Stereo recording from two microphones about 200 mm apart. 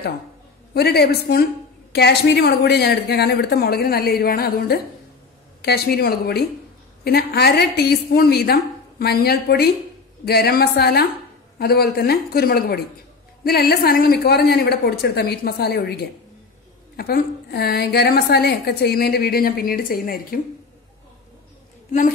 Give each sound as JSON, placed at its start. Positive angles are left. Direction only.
{"t": 0.7, "sound": "a woman's voice", "side_deg": 55}